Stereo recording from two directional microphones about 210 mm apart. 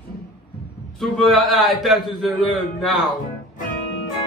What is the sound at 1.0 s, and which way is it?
A man's voice, centre (ahead or behind).